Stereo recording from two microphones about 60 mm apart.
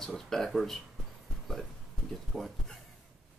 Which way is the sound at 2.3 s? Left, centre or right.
Centre.